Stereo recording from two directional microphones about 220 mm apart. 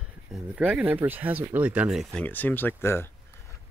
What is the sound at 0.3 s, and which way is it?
Speech, 5° right (ahead or behind).